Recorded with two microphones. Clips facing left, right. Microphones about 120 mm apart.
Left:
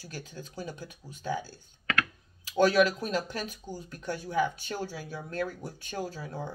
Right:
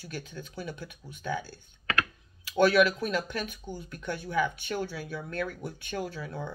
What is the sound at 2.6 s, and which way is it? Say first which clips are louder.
Speech: right 1 dB; 35° left (ahead or behind).